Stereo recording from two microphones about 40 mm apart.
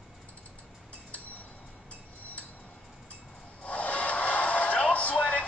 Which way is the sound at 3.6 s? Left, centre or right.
Left.